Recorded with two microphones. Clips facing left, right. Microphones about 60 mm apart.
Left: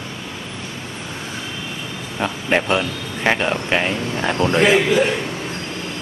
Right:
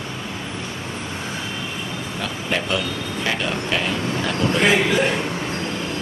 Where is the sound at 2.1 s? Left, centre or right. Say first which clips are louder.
Left 6 dB; left.